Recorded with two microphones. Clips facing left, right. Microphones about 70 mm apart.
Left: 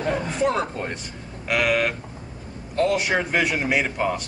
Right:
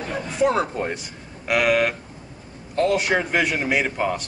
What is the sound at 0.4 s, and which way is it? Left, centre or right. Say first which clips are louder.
A man's voice: right 6 dB; centre.